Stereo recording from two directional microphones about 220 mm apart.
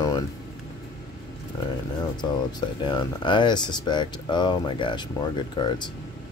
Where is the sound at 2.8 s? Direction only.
20° left (ahead or behind).